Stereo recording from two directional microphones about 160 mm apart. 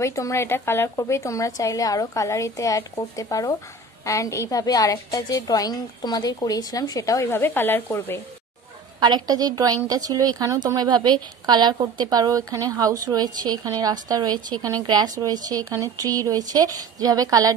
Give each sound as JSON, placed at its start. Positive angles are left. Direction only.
{"t": 0.0, "sound": "a woman's voice", "side_deg": 20}
{"t": 9.0, "sound": "a woman's voice", "side_deg": -25}